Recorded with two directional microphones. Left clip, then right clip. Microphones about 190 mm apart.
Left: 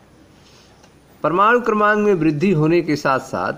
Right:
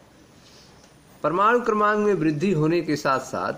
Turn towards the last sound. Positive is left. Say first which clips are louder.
# left 4 dB
turn(degrees=20)  # may be behind; listen again after turning